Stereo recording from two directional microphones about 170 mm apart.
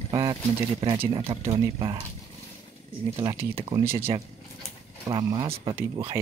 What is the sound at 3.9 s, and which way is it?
Speech, 35° right (ahead or behind).